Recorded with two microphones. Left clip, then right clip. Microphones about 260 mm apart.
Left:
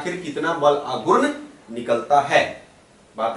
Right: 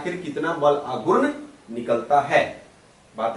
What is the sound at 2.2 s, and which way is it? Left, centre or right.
Speech, centre.